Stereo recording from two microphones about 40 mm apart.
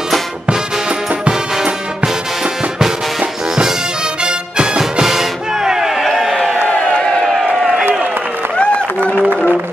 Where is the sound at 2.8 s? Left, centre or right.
Centre.